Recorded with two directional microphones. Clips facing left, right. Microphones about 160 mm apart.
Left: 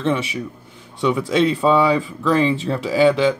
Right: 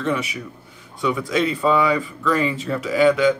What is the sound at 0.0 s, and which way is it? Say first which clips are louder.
Speech: left 3 dB; 25° left (ahead or behind).